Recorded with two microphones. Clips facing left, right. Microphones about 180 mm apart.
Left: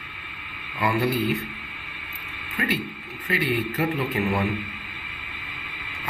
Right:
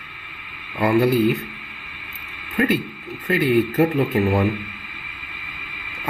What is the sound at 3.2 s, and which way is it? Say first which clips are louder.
A man's voice: right 8 dB; 45° right (ahead or behind).